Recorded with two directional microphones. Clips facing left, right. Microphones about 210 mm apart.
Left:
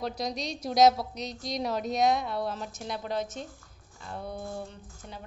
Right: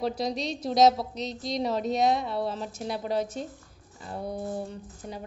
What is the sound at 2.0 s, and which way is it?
A woman's voice, centre (ahead or behind).